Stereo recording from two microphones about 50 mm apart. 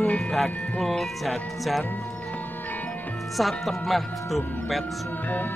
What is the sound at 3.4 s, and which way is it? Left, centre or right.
Speech, centre.